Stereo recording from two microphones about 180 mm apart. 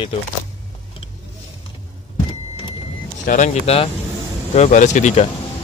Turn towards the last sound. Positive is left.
turn(degrees=40)  # may be behind; listen again after turning